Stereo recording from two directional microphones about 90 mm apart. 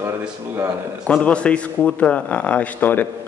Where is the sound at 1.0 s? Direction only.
10° left (ahead or behind).